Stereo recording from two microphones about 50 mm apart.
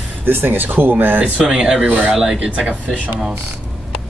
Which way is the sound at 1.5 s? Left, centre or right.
Centre.